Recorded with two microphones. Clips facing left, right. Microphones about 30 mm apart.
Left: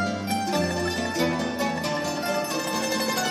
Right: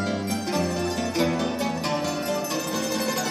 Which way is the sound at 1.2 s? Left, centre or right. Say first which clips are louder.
Right 1 dB; centre.